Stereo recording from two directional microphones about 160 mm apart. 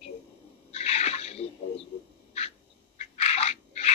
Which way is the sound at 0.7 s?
40° left (ahead or behind).